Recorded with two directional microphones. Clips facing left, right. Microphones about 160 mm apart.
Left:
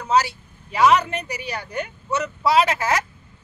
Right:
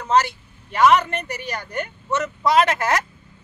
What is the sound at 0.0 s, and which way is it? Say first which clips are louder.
Speech: right 1 dB; 5° left (ahead or behind).